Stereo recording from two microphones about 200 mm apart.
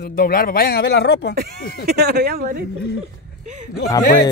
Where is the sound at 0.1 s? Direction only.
45° left (ahead or behind).